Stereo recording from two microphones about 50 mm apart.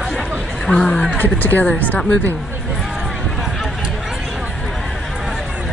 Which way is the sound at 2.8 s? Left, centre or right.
Centre.